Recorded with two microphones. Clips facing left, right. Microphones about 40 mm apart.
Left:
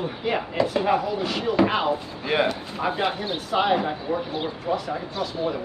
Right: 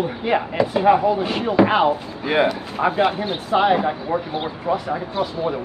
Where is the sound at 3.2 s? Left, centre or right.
Right.